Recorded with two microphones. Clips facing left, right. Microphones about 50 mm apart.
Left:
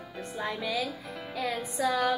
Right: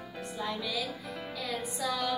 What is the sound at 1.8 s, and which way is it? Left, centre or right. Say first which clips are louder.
Speech: left 7 dB; left.